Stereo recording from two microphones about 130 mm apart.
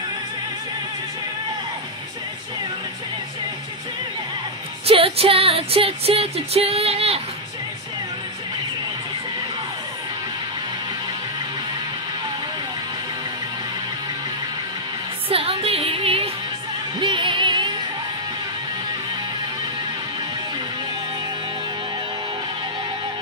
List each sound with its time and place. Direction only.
4.8 s music: 50° right (ahead or behind)
15.2 s music: 45° right (ahead or behind)